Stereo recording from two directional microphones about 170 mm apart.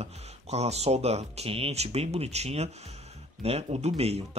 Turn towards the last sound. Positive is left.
turn(degrees=-35)  # may be behind; listen again after turning